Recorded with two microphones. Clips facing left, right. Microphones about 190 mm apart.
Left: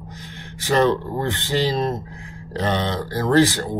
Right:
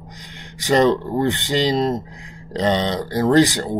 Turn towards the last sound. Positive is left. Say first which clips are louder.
# right 2 dB
turn(degrees=-15)  # may be behind; listen again after turning